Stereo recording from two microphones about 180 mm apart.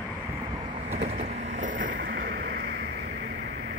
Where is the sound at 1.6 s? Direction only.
45° right (ahead or behind).